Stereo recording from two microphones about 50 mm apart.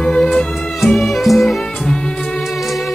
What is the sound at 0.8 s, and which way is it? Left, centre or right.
Music, centre.